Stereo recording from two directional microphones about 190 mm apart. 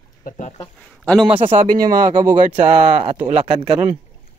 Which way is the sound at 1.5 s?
45° right (ahead or behind).